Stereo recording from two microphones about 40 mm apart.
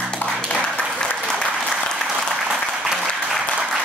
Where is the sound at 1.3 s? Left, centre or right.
Centre.